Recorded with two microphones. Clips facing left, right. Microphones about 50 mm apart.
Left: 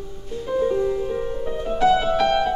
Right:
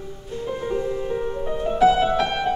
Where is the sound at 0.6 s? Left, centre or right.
Centre.